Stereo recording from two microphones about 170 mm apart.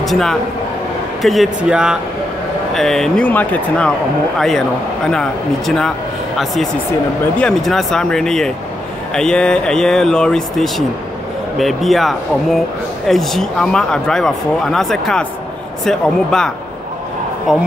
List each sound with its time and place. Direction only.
0.0 s speech: centre (ahead or behind)